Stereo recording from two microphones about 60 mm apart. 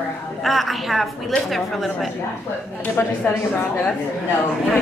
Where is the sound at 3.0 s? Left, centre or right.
Left.